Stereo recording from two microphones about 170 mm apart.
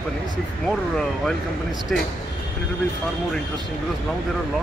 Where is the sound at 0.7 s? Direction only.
5° left (ahead or behind).